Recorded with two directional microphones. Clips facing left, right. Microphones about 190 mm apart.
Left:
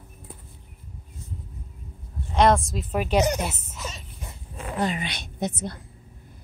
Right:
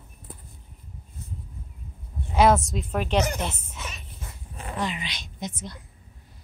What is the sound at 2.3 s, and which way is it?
A woman's voice, 5° right (ahead or behind).